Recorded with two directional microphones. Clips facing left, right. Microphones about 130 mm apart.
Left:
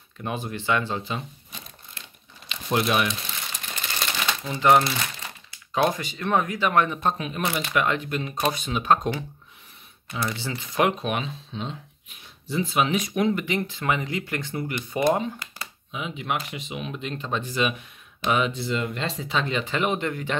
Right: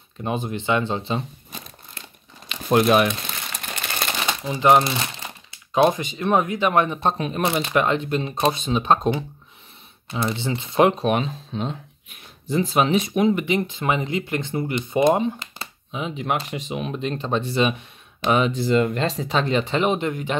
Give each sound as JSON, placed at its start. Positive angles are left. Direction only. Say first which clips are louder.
{"t": 0.2, "sound": "speech", "louder": "right 4 dB", "side_deg": -20}
{"t": 1.5, "sound": "crumpling", "louder": "right 4 dB", "side_deg": -45}
{"t": 4.3, "sound": "speech", "louder": "right 2 dB", "side_deg": -20}
{"t": 19.7, "sound": "speech", "louder": "right 4 dB", "side_deg": -25}